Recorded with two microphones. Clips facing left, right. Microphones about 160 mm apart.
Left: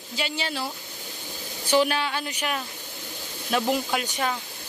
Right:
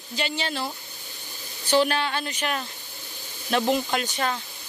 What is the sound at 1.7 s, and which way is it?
Speech, 10° left (ahead or behind).